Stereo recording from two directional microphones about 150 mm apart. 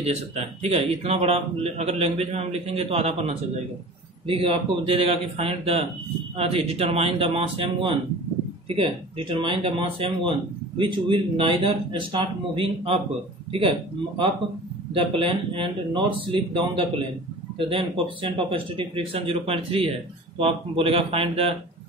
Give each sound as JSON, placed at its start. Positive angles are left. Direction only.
{"t": 0.0, "sound": "speech", "side_deg": -45}